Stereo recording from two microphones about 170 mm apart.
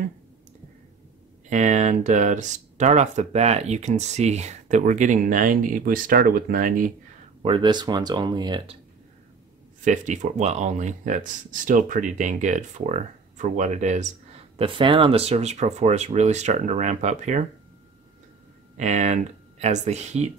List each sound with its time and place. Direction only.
1.5 s speech: 45° right (ahead or behind)
7.4 s speech: 30° right (ahead or behind)
9.8 s speech: 45° right (ahead or behind)
14.6 s speech: 30° right (ahead or behind)
18.8 s speech: 45° right (ahead or behind)